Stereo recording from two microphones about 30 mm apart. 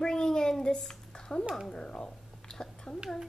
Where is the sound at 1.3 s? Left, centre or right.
Left.